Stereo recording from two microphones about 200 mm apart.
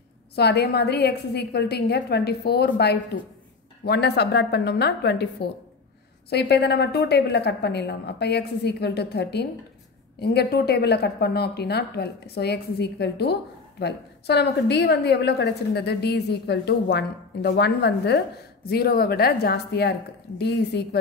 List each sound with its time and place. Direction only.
0.4 s a woman's voice: 55° left (ahead or behind)
6.3 s a woman's voice: 55° left (ahead or behind)